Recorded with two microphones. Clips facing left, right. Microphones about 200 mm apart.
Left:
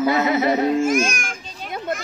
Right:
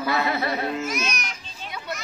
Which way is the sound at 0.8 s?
50° left (ahead or behind).